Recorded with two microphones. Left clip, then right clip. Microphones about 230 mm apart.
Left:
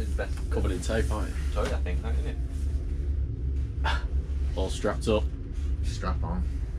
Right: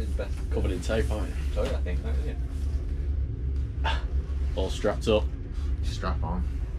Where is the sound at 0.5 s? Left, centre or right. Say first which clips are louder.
Right 1 dB; centre.